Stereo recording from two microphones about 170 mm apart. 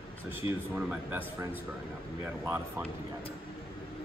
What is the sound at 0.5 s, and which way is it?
Speech, 10° right (ahead or behind).